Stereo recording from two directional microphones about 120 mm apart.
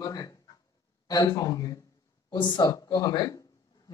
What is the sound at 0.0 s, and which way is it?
Speech, 30° left (ahead or behind).